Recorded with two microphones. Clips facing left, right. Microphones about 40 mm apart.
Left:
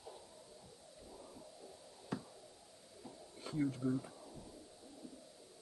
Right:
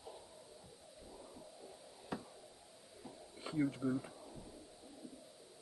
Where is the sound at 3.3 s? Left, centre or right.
Centre.